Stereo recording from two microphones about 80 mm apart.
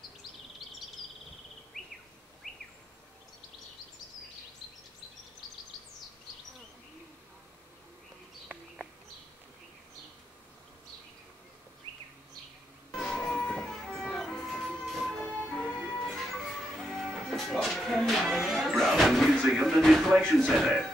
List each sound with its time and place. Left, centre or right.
1.8 s bird: centre
2.4 s bird vocalization: centre
12.9 s music: centre
15.2 s music: centre
16.0 s music: centre
20.4 s speech: centre